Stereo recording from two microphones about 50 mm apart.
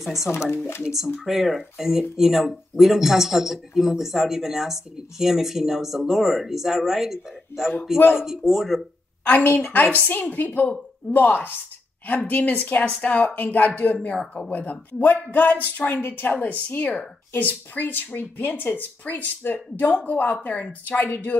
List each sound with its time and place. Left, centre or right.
0.0 s speech: centre
9.2 s speech: left